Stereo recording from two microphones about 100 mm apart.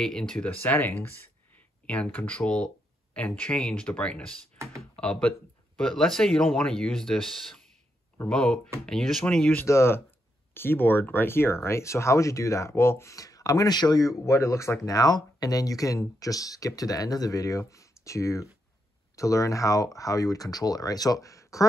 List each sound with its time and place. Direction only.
0.0 s speech: 5° left (ahead or behind)
0.6 s speech: 20° left (ahead or behind)
9.6 s speech: 25° left (ahead or behind)
14.9 s speech: 40° left (ahead or behind)